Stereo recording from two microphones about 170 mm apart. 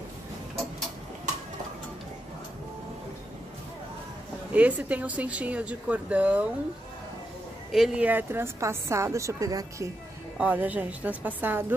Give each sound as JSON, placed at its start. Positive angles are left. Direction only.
{"t": 4.5, "sound": "a woman's voice", "side_deg": -10}
{"t": 7.7, "sound": "a woman's voice", "side_deg": -5}
{"t": 10.4, "sound": "a woman's voice", "side_deg": -10}